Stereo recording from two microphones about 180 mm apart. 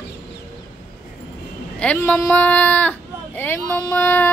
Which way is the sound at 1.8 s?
10° left (ahead or behind).